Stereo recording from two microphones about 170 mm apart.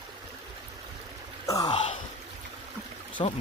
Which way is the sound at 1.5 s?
20° left (ahead or behind).